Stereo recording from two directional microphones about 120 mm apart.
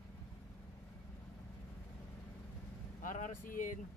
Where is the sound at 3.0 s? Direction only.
90° left.